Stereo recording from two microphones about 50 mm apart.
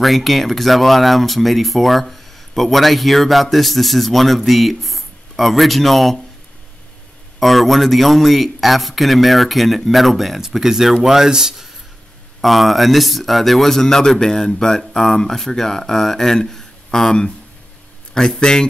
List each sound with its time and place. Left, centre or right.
0.0 s speech: centre
7.3 s a man's voice: centre